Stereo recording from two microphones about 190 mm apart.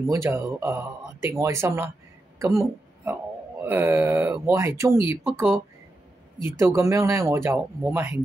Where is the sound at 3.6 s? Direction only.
10° right (ahead or behind).